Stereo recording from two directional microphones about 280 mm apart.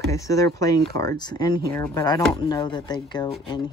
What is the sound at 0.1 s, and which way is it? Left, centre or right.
Speech, centre.